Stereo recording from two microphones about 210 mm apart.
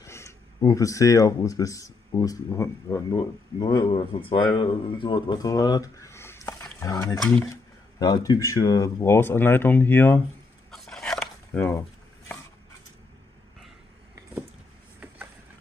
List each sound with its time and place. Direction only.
0.0 s speech: 15° left (ahead or behind)
8.0 s speech: 20° left (ahead or behind)
10.7 s a sound: centre (ahead or behind)